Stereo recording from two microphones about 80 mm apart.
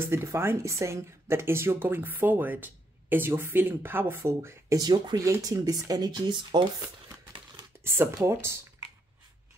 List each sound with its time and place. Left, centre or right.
0.1 s speech: right
4.7 s speech: right
8.2 s speech: right